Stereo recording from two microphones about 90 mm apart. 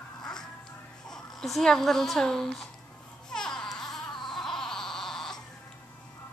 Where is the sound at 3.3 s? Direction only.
5° left (ahead or behind).